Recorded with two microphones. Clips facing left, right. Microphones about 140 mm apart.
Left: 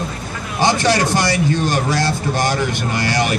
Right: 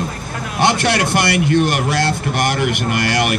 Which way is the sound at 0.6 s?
65° right (ahead or behind).